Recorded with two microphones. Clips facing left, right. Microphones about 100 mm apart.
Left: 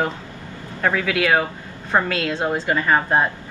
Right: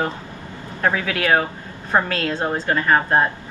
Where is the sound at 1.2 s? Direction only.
5° left (ahead or behind).